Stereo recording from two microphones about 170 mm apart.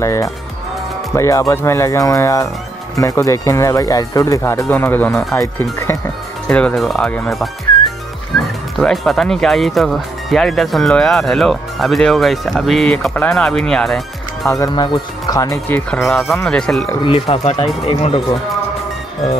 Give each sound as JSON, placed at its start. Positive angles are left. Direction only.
{"t": 0.0, "sound": "speech", "side_deg": 20}
{"t": 14.5, "sound": "speech", "side_deg": 20}
{"t": 15.9, "sound": "speech", "side_deg": 0}
{"t": 17.0, "sound": "speech", "side_deg": 35}